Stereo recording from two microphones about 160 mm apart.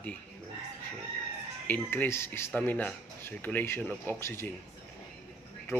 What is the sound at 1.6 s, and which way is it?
Speech, 15° left (ahead or behind).